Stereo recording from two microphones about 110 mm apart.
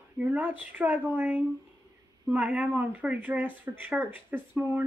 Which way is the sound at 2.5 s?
15° right (ahead or behind).